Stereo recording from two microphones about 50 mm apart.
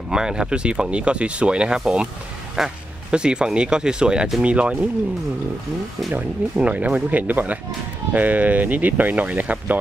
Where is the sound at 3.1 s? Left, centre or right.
Centre.